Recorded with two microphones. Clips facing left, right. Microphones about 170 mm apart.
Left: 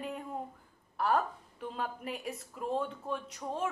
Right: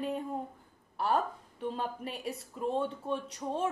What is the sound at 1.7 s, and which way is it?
Speech, 30° right (ahead or behind).